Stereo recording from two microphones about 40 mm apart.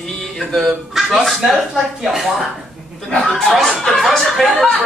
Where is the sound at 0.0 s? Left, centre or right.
Centre.